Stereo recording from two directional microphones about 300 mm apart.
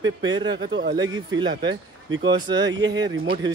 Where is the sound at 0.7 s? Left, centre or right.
Right.